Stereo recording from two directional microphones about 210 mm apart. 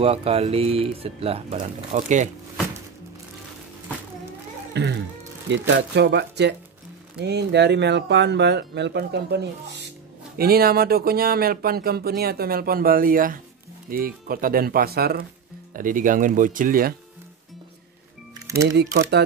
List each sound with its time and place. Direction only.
0.0 s speech: 30° right (ahead or behind)
4.7 s music: 55° right (ahead or behind)
5.5 s speech: 55° right (ahead or behind)
18.5 s speech: 15° right (ahead or behind)
18.8 s speech: 50° right (ahead or behind)